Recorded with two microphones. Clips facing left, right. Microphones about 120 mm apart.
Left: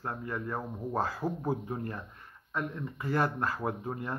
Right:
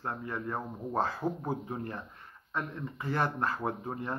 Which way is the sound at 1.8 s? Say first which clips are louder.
Left 1 dB; 25° right (ahead or behind).